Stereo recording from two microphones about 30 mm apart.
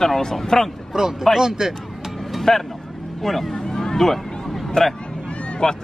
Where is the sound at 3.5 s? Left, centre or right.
Centre.